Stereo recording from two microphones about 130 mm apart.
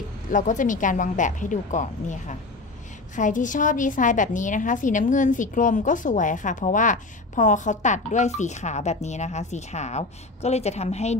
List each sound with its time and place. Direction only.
0.3 s a woman's voice: 75° left (ahead or behind); by 11.1 s 55° left (ahead or behind)